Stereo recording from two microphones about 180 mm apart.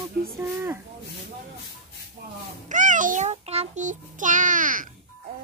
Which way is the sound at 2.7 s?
45° right (ahead or behind).